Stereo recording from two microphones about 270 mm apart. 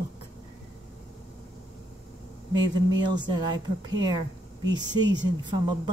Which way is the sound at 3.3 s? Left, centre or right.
Centre.